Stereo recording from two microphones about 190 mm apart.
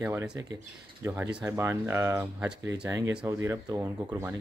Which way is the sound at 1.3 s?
15° right (ahead or behind).